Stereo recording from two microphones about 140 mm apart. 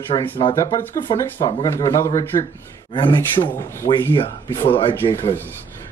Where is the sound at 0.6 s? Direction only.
20° left (ahead or behind).